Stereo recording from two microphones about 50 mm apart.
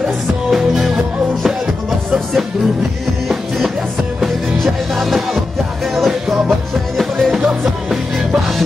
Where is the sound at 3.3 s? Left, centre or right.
Centre.